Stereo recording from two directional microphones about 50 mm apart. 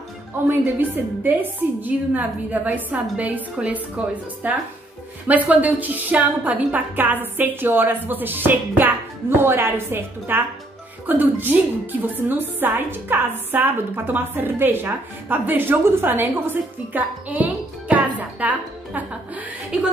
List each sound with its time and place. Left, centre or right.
0.5 s a woman's voice: right
9.4 s a woman's voice: right
19.7 s speech: centre